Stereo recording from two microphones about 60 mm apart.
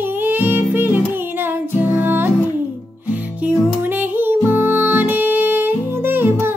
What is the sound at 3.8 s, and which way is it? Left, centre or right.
Music, right.